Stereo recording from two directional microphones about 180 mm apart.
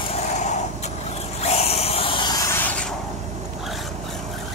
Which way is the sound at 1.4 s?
35° left (ahead or behind).